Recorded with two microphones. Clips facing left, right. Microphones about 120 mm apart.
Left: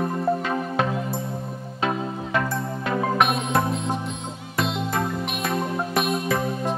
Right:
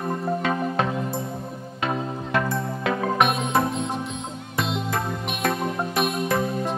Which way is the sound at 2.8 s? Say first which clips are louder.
Even; centre (ahead or behind).